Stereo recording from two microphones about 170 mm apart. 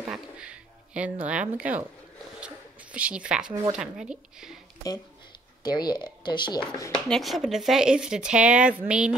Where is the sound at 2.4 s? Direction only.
10° right (ahead or behind).